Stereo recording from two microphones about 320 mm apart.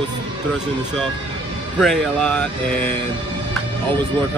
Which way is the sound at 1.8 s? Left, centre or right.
Centre.